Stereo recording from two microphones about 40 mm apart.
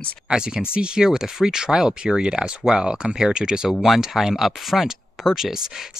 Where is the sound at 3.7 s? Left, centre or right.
Centre.